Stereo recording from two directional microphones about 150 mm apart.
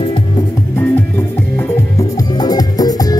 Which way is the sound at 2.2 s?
25° left (ahead or behind).